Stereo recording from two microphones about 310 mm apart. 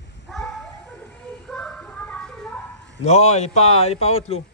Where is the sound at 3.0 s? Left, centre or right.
Left.